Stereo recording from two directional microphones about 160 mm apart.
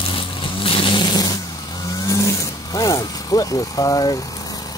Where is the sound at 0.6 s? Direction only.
35° left (ahead or behind).